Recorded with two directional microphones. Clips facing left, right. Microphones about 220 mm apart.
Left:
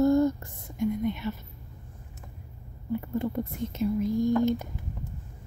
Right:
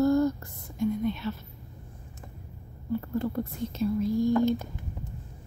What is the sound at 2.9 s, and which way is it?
Speech, 15° left (ahead or behind).